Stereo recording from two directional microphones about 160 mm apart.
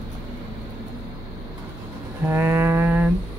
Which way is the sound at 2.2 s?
15° right (ahead or behind).